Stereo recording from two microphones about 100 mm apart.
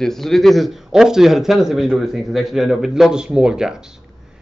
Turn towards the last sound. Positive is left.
turn(degrees=-5)  # may be behind; listen again after turning